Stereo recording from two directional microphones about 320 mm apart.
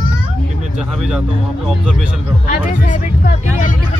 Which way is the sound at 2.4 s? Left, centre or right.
Left.